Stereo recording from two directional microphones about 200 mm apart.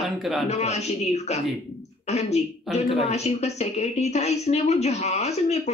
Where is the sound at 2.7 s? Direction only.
Centre (ahead or behind).